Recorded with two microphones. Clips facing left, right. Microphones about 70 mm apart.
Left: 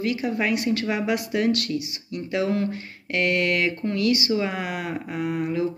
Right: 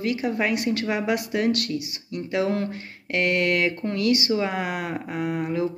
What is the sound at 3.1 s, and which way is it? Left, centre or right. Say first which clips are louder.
Speech: even; right.